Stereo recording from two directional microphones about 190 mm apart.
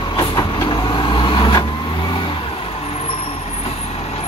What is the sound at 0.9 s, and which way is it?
Vehicle, 25° left (ahead or behind).